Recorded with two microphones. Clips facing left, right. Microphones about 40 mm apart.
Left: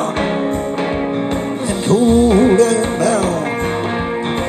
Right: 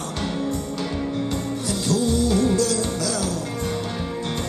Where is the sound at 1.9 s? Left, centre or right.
Left.